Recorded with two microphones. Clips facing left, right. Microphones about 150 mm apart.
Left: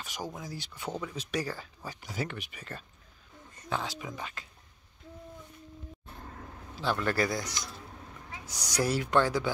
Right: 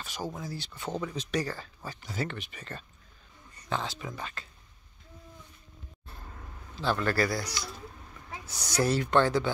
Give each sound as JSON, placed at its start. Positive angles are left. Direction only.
{"t": 0.0, "sound": "a sound", "side_deg": 15}
{"t": 0.4, "sound": "speech", "side_deg": 15}
{"t": 6.7, "sound": "speech", "side_deg": 10}